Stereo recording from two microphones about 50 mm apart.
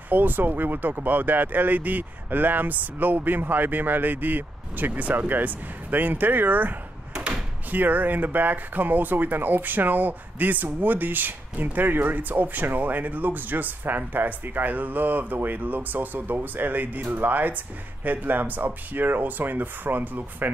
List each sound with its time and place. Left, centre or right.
0.1 s speech: right
7.7 s speech: right